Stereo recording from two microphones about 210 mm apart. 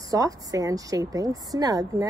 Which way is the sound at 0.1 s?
15° right (ahead or behind).